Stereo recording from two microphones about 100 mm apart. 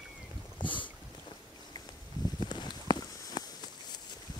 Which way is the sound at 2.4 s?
50° left (ahead or behind).